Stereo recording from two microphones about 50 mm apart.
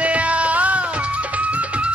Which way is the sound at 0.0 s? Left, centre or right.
Right.